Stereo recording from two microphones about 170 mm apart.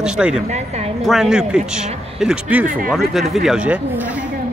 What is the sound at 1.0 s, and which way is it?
A woman's voice, centre (ahead or behind).